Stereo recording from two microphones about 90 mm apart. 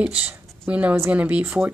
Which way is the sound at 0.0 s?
15° right (ahead or behind).